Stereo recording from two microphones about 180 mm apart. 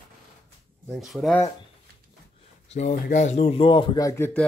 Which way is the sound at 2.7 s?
40° left (ahead or behind).